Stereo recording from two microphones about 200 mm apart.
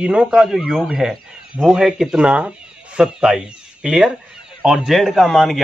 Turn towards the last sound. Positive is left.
turn(degrees=0)  # may be behind; listen again after turning